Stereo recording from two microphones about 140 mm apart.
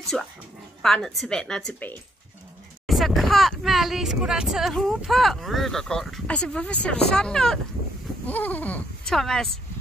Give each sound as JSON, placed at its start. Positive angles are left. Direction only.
{"t": 0.1, "sound": "speech", "side_deg": 0}